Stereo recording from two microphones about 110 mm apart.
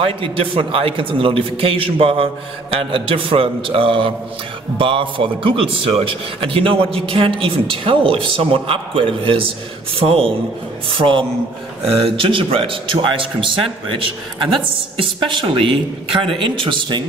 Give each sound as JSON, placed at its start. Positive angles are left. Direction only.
{"t": 0.0, "sound": "a man's voice", "side_deg": -55}